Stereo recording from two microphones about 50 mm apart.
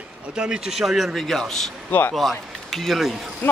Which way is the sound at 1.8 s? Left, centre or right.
Left.